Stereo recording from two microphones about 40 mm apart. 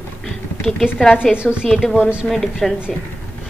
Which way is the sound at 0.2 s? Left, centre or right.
Centre.